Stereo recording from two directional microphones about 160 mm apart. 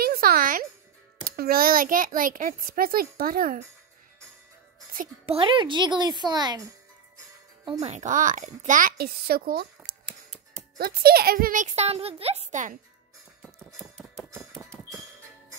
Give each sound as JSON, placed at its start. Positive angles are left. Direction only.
{"t": 0.0, "sound": "music", "side_deg": -70}
{"t": 1.2, "sound": "a child's voice", "side_deg": -70}
{"t": 5.2, "sound": "speech", "side_deg": -35}
{"t": 7.8, "sound": "a child's voice", "side_deg": -45}
{"t": 13.7, "sound": "typewriter", "side_deg": -15}